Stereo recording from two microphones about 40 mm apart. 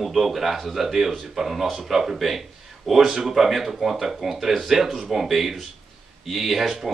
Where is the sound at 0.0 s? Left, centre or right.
Centre.